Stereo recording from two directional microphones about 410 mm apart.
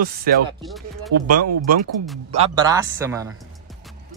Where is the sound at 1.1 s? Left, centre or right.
Right.